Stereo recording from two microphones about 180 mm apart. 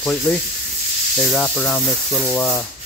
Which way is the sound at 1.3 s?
5° left (ahead or behind).